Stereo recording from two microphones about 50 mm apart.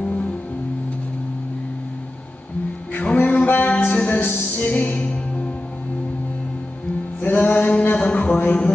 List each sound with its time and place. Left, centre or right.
0.0 s music: left
3.2 s music: left
7.2 s music: left
7.8 s a sound: left